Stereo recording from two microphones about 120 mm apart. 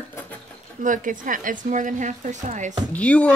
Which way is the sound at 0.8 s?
90° right.